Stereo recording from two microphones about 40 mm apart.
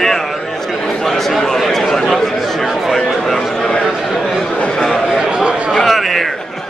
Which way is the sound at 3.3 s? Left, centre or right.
Centre.